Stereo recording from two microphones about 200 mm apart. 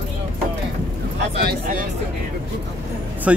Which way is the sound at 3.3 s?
5° right (ahead or behind).